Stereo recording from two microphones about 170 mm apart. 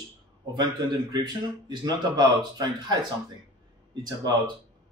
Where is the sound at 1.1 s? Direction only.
25° right (ahead or behind).